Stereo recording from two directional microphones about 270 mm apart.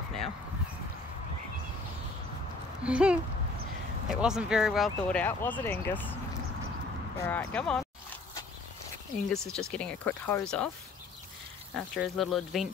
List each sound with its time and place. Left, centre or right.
2.8 s speech: centre
7.2 s speech: centre
9.5 s speech: centre
11.7 s speech: centre